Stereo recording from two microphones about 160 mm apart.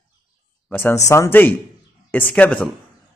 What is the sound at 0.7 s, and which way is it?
Speech, 15° left (ahead or behind).